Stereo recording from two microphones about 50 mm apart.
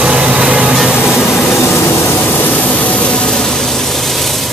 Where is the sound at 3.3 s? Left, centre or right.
Centre.